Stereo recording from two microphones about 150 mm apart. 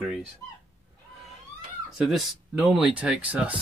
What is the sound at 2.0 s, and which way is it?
Speech, centre (ahead or behind).